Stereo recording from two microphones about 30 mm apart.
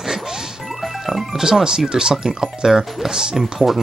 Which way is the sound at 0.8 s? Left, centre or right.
Centre.